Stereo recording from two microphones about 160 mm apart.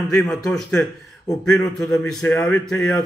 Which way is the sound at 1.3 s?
20° left (ahead or behind).